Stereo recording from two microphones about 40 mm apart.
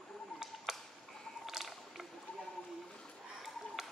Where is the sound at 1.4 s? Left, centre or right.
Centre.